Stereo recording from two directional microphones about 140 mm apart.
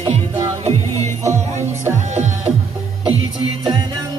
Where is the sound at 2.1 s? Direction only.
55° right (ahead or behind).